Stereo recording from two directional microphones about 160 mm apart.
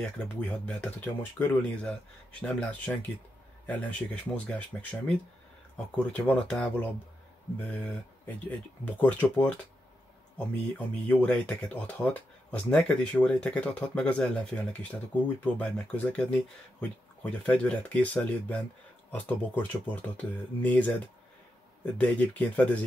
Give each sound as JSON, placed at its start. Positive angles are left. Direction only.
{"t": 0.0, "sound": "speech", "side_deg": 5}
{"t": 11.1, "sound": "speech", "side_deg": 10}
{"t": 21.9, "sound": "speech", "side_deg": 10}